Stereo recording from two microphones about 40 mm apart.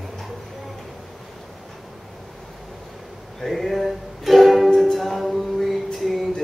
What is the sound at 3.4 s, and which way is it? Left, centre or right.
Ukulele, centre.